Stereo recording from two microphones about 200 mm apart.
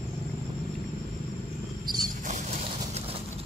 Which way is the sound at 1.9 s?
40° right (ahead or behind).